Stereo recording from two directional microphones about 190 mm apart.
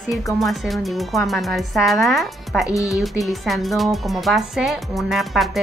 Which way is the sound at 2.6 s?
15° left (ahead or behind).